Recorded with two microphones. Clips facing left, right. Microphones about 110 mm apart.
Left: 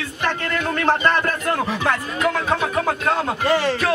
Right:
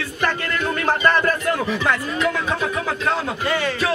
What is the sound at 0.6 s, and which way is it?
Speech, 55° left (ahead or behind).